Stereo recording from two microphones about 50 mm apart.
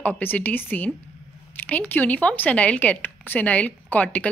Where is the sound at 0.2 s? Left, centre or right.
Left.